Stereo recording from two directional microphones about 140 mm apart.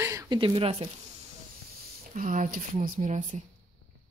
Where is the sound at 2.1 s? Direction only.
75° right (ahead or behind).